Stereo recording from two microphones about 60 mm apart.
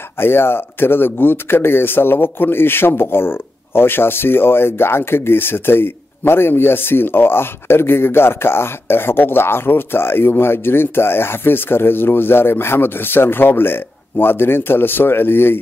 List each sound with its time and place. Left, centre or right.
0.2 s speech: left